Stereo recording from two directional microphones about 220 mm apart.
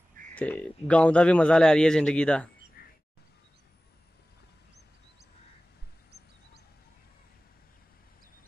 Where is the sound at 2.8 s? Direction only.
45° left (ahead or behind).